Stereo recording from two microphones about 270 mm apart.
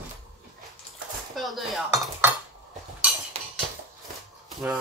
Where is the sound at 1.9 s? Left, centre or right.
Centre.